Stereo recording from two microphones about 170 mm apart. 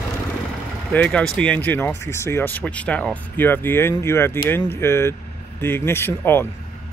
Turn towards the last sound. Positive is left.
turn(degrees=15)  # may be behind; listen again after turning